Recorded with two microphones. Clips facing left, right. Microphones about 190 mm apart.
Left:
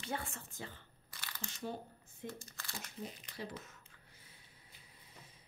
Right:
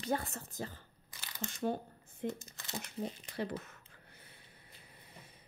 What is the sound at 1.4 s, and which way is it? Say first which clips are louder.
Speech: right 8 dB; 55° right (ahead or behind).